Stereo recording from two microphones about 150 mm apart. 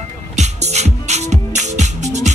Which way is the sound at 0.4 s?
50° right (ahead or behind).